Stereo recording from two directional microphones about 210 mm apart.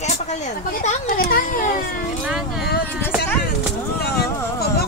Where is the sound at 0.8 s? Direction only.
40° left (ahead or behind).